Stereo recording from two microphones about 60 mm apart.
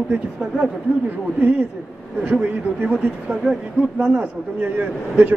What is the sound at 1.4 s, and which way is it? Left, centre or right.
Speech, right.